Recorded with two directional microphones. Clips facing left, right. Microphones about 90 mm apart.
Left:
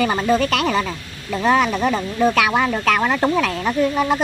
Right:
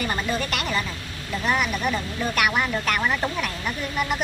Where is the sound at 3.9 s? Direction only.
25° left (ahead or behind).